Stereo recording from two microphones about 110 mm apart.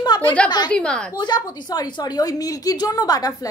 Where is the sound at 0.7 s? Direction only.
10° left (ahead or behind).